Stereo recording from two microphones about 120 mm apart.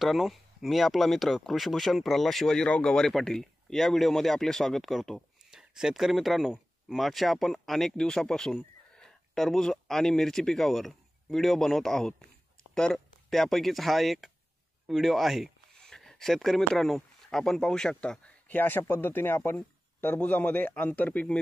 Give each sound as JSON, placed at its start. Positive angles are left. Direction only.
{"t": 0.0, "sound": "speech", "side_deg": 0}